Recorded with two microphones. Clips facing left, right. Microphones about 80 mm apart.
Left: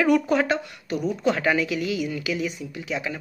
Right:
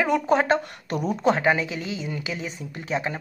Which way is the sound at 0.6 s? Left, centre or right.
Right.